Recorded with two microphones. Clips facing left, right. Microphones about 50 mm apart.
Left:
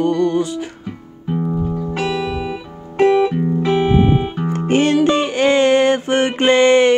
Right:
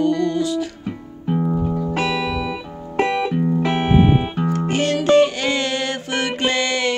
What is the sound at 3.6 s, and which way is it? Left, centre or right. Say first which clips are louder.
Music: left 3 dB; right.